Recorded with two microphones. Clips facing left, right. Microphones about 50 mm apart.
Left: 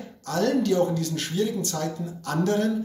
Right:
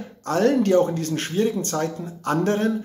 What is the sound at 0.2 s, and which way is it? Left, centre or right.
Speech, right.